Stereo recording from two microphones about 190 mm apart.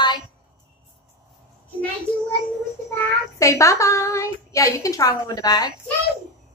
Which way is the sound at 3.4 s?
15° left (ahead or behind).